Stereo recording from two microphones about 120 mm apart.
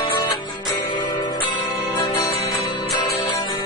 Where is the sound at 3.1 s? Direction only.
30° left (ahead or behind).